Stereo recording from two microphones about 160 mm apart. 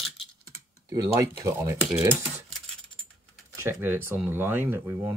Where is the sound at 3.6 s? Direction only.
15° right (ahead or behind).